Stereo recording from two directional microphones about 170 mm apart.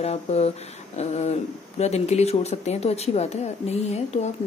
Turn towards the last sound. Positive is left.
turn(degrees=40)  # may be behind; listen again after turning